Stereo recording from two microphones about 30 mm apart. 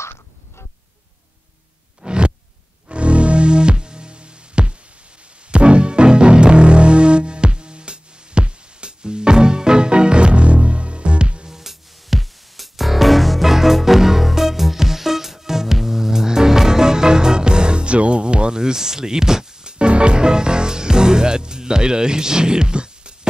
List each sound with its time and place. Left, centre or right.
2.0 s a sound: right
2.9 s music: right
11.4 s music: centre
13.4 s music: centre
19.8 s music: right